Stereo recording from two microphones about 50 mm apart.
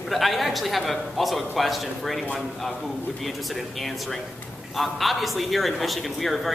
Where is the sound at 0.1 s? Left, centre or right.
Centre.